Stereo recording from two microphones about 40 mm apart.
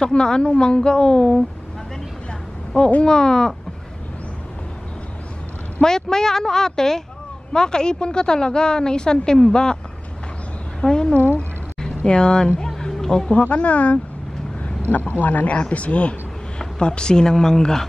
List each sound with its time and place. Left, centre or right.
0.0 s a woman's voice: left
2.7 s a woman's voice: left
5.8 s a woman's voice: centre
10.8 s a woman's voice: centre
11.1 s a sound: left
11.8 s speech: left
12.6 s music: centre
13.3 s speech: left
14.6 s a man's voice: left
16.5 s a woman's voice: left